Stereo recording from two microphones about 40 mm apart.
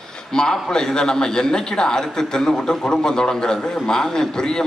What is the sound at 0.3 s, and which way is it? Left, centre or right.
A man's voice, centre.